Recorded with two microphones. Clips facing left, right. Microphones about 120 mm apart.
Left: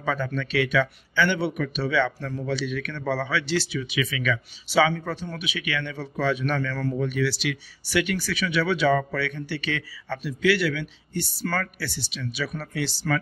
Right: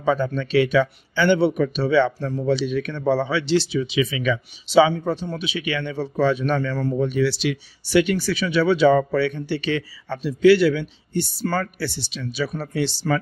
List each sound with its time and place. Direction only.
0.0 s speech: 25° right (ahead or behind)